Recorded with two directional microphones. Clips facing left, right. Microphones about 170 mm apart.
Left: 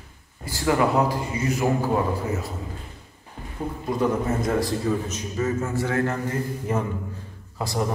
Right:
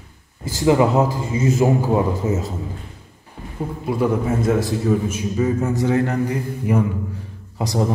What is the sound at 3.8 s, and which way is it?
A man's voice, 10° right (ahead or behind).